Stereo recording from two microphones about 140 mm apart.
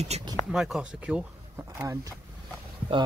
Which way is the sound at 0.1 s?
50° right (ahead or behind).